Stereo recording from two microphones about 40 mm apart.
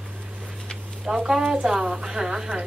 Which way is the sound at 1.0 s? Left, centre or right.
Centre.